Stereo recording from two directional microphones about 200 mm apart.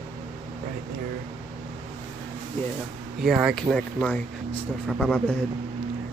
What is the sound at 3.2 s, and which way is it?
Speech, centre (ahead or behind).